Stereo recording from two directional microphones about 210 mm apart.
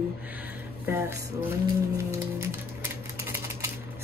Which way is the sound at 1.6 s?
15° right (ahead or behind).